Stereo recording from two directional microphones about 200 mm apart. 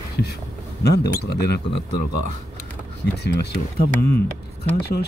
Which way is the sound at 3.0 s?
55° left (ahead or behind).